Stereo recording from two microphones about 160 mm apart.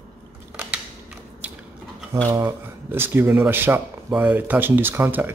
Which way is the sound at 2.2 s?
20° right (ahead or behind).